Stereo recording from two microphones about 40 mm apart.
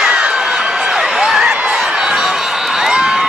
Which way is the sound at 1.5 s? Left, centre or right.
Right.